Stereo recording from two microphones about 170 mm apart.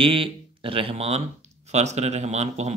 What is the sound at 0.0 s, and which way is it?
Speech, 30° right (ahead or behind).